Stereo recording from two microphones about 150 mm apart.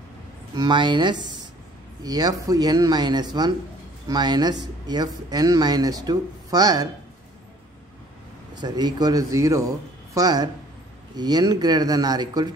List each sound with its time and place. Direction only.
0.6 s speech: 30° right (ahead or behind)
8.5 s speech: 30° right (ahead or behind)